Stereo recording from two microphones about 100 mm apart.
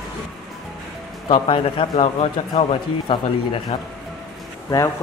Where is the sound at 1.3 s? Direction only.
60° left (ahead or behind); by 3.1 s 90° left.